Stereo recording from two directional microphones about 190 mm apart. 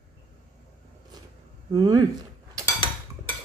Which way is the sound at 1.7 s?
20° right (ahead or behind).